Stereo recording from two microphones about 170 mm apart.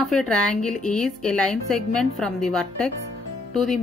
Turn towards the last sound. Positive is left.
turn(degrees=0)  # may be behind; listen again after turning